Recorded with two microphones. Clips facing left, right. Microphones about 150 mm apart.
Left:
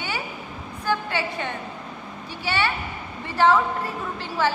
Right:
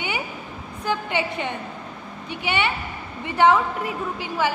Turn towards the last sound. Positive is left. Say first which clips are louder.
# even
turn(degrees=-15)  # may be behind; listen again after turning